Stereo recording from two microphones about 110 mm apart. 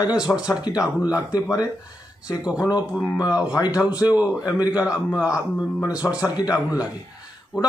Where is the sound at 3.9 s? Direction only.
35° left (ahead or behind).